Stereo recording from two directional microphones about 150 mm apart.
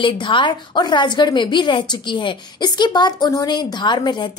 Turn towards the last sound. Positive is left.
turn(degrees=30)  # may be behind; listen again after turning